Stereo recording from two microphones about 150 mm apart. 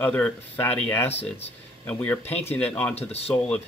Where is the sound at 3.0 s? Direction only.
45° left (ahead or behind).